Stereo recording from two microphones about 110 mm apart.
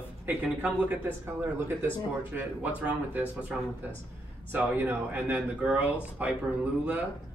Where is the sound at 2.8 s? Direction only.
15° right (ahead or behind).